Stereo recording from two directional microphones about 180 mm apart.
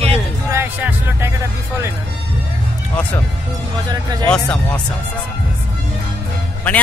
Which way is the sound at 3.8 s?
20° right (ahead or behind).